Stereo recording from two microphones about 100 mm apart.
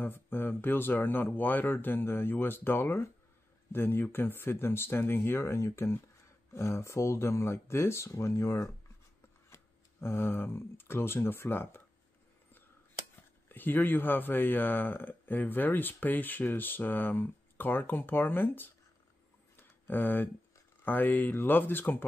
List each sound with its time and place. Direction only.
0.0 s speech: 20° left (ahead or behind)
13.5 s speech: 20° left (ahead or behind)
19.5 s tick: 20° left (ahead or behind)
20.8 s speech: 20° left (ahead or behind)